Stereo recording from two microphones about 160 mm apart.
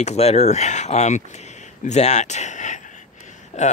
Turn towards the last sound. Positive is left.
turn(degrees=45)  # may be behind; listen again after turning